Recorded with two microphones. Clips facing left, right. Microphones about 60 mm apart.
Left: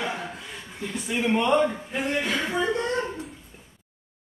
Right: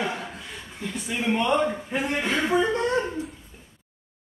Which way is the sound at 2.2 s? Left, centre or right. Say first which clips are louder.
Right 4 dB; right.